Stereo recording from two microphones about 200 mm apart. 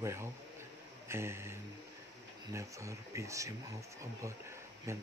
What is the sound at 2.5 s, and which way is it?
Speech, 15° right (ahead or behind).